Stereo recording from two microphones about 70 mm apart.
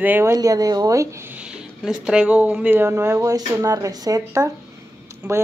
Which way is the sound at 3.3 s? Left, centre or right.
Right.